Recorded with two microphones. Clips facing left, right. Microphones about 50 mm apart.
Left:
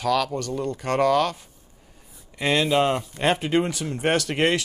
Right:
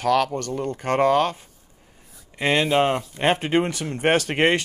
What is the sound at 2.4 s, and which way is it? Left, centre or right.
Speech, right.